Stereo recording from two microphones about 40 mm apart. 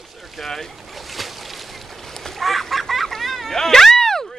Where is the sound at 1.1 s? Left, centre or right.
Centre.